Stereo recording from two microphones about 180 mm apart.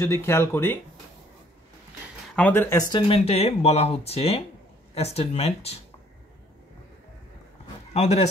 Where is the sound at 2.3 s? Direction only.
10° left (ahead or behind); by 5.8 s 35° left (ahead or behind).